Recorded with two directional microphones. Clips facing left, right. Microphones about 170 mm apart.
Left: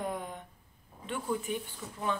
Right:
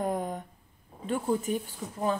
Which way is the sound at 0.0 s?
45° right (ahead or behind).